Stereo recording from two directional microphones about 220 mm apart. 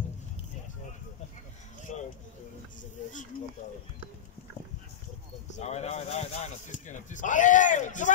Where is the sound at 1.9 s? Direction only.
35° left (ahead or behind).